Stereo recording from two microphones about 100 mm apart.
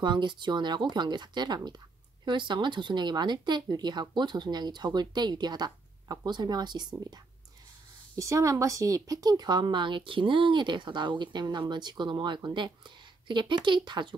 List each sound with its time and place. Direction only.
0.0 s speech: 50° right (ahead or behind)
8.2 s speech: 30° right (ahead or behind); by 14.1 s 50° right (ahead or behind)